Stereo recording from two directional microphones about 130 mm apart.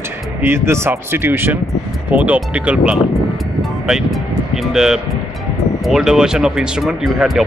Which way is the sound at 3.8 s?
5° right (ahead or behind).